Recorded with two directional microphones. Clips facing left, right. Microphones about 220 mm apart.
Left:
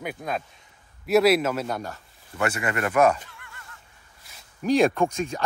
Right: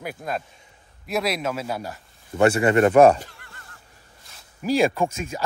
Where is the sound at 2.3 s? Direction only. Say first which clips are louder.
Right 9 dB; 30° right (ahead or behind).